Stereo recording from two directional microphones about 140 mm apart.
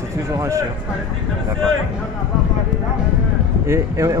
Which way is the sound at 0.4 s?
20° right (ahead or behind).